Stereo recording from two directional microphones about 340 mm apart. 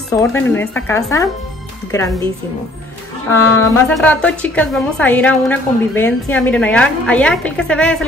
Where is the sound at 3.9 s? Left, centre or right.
Centre.